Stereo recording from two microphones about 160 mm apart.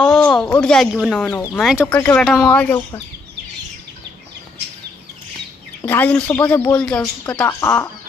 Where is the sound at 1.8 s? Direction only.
15° left (ahead or behind).